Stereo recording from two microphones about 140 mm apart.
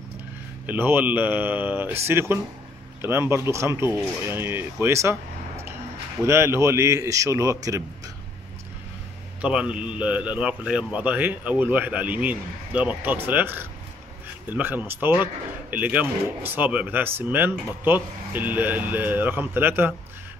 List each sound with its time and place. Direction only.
0.7 s a man's voice: 15° right (ahead or behind)
6.2 s speech: 20° right (ahead or behind)
9.4 s a man's voice: 10° right (ahead or behind)